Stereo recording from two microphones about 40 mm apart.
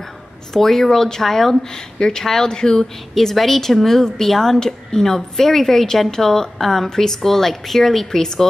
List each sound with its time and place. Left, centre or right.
0.5 s a woman's voice: centre
3.2 s a woman's voice: centre